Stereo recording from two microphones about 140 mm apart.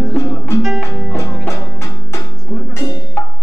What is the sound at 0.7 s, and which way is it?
Music, centre (ahead or behind).